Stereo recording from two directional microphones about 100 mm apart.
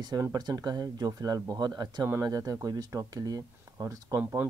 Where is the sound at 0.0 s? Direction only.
40° right (ahead or behind).